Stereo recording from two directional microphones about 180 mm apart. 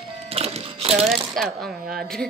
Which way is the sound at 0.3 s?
35° right (ahead or behind).